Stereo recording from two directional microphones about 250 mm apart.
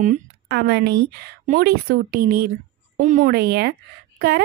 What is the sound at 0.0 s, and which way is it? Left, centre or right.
A woman's voice, right.